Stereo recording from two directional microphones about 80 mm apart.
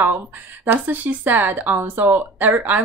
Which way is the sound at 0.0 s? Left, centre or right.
Right.